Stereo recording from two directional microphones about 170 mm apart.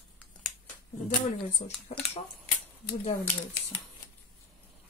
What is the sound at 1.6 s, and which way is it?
Speech, 40° left (ahead or behind).